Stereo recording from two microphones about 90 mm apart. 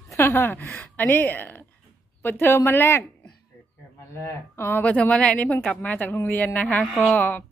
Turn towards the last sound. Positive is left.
turn(degrees=20)  # may be behind; listen again after turning